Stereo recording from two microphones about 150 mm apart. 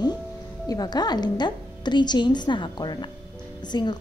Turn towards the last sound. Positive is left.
turn(degrees=30)  # may be behind; listen again after turning